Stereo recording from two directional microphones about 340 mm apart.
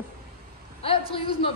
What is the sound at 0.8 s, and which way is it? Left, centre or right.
Speech, centre.